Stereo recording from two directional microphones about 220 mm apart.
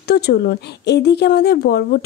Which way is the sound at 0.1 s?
45° left (ahead or behind).